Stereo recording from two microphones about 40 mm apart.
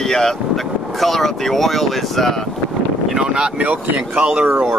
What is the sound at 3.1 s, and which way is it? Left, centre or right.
Speech, centre.